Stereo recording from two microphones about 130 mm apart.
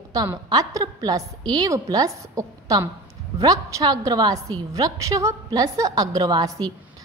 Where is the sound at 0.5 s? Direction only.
30° right (ahead or behind).